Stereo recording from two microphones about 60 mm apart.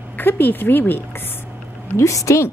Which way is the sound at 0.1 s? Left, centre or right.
Left.